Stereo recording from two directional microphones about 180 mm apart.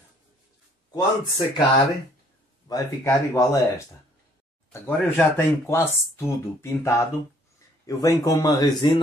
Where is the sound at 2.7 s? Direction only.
20° left (ahead or behind).